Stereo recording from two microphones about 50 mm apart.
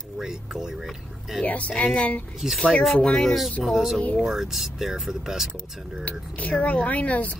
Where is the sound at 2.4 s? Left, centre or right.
Centre.